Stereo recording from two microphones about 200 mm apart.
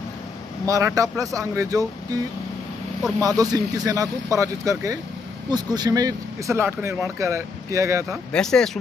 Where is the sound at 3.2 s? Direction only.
20° right (ahead or behind).